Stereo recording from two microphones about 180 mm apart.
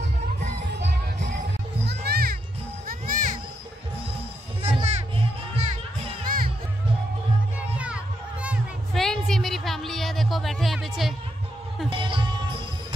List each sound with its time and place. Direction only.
0.7 s music: 70° right (ahead or behind)
1.9 s music: 60° right (ahead or behind)
2.9 s music: 50° right (ahead or behind)
4.8 s music: 35° right (ahead or behind)
6.2 s music: 50° right (ahead or behind)
7.7 s music: 5° right (ahead or behind)
11.9 s music: 30° right (ahead or behind)